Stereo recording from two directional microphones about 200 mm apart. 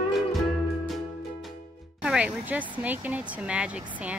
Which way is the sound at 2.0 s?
5° right (ahead or behind).